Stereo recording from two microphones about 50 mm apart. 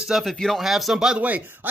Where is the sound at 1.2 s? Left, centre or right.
Right.